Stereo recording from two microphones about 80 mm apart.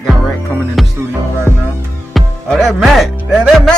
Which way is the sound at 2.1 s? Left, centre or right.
Centre.